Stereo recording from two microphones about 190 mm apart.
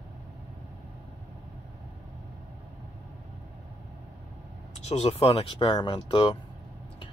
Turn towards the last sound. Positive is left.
turn(degrees=25)  # may be behind; listen again after turning